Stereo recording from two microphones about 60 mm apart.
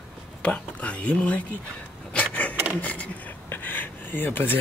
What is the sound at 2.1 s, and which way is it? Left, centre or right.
Wood, left.